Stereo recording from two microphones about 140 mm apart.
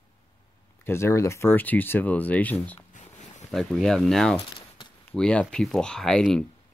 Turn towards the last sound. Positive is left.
turn(degrees=5)  # may be behind; listen again after turning